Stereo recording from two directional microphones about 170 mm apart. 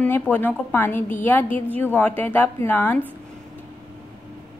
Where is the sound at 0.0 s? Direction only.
10° left (ahead or behind).